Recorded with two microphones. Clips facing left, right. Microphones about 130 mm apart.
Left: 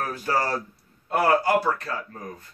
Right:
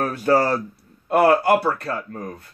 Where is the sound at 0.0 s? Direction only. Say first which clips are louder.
Right 7 dB; 55° right (ahead or behind).